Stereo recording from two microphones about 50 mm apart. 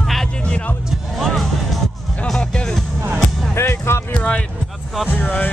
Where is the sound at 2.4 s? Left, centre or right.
Centre.